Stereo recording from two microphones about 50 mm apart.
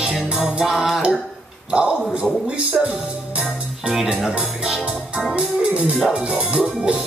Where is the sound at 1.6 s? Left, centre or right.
Right.